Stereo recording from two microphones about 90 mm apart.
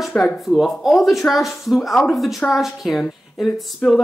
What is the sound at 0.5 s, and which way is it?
Speech, centre (ahead or behind).